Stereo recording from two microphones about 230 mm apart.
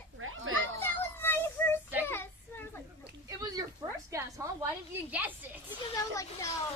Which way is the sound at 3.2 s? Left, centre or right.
Centre.